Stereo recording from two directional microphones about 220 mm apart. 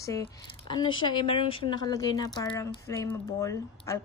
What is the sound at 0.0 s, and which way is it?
Speech, 15° left (ahead or behind).